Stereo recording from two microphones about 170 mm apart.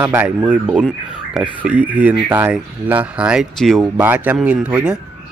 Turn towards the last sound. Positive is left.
turn(degrees=-5)  # may be behind; listen again after turning